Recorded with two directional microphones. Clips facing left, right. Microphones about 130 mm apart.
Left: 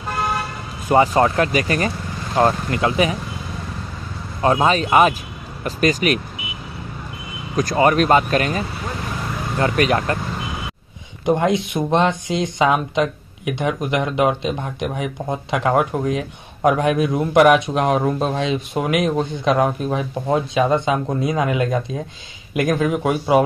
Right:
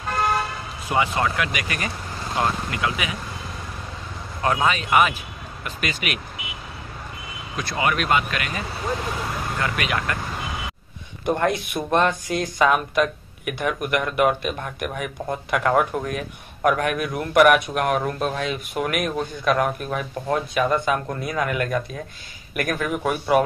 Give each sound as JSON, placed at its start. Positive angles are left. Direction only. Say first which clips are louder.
{"t": 0.8, "sound": "speech", "louder": "left 8 dB", "side_deg": 40}
{"t": 4.4, "sound": "speech", "louder": "left 5 dB", "side_deg": 30}
{"t": 7.5, "sound": "speech", "louder": "left 8 dB", "side_deg": 40}
{"t": 11.2, "sound": "speech", "louder": "left 4 dB", "side_deg": 15}